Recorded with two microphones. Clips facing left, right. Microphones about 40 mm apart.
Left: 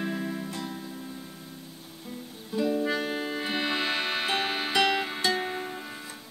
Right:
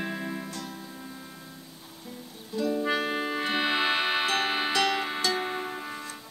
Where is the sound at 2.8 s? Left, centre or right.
Centre.